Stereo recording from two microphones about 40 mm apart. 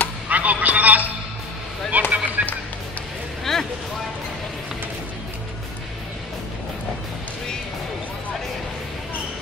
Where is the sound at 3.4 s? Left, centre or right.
Centre.